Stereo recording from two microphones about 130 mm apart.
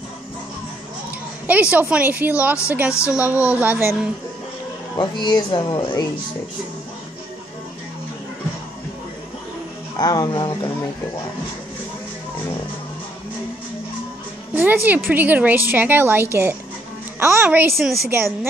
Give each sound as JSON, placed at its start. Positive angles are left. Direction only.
{"t": 1.5, "sound": "a woman's voice", "side_deg": -10}
{"t": 2.9, "sound": "speech", "side_deg": 20}
{"t": 3.2, "sound": "a woman's voice", "side_deg": -10}
{"t": 4.9, "sound": "speech", "side_deg": 35}
{"t": 9.9, "sound": "speech", "side_deg": 30}
{"t": 14.5, "sound": "a woman's voice", "side_deg": -15}